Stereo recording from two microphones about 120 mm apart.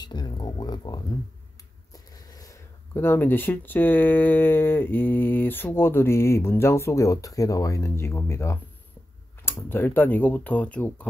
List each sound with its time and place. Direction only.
0.0 s speech: 35° left (ahead or behind)
2.3 s a sound: 30° left (ahead or behind)
3.0 s speech: 15° left (ahead or behind)